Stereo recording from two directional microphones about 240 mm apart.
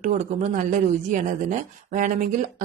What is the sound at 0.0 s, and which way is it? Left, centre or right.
Speech, right.